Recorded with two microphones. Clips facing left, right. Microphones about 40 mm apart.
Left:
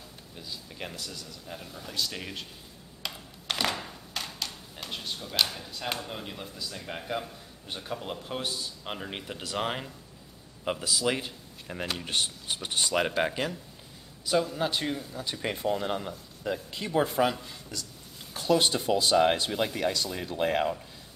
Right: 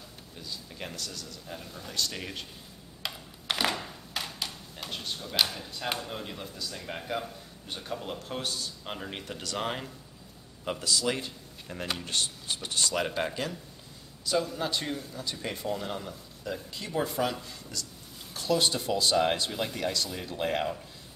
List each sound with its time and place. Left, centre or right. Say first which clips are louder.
0.4 s speech: left 1 dB; centre
3.0 s a man's voice: even; centre